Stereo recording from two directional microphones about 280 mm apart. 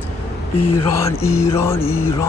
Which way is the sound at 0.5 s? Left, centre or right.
Left.